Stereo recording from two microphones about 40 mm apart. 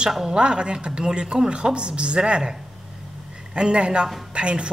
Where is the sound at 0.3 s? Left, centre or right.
Right.